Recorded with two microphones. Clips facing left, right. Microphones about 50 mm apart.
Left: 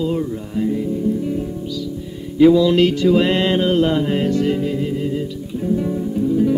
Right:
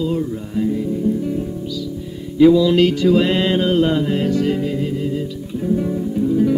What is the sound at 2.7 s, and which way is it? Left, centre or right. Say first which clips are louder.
Music: even; centre.